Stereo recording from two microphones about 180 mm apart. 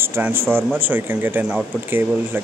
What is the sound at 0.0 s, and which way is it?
Speech, 10° right (ahead or behind).